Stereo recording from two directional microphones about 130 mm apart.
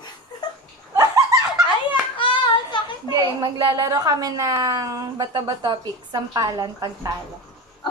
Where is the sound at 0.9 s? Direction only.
30° right (ahead or behind).